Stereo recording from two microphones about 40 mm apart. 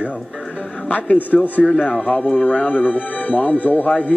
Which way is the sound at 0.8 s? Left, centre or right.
Left.